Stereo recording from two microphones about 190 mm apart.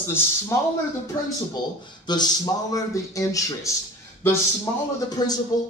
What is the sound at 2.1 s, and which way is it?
Speech, 25° left (ahead or behind).